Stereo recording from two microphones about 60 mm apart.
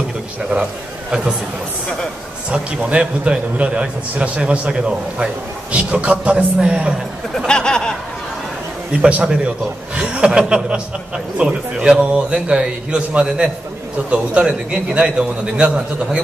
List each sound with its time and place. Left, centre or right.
2.5 s a man's voice: centre
7.3 s speech: centre
9.0 s a man's voice: centre